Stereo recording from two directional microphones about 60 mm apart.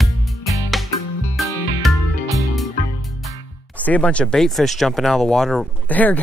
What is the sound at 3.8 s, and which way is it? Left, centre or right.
Speech, left.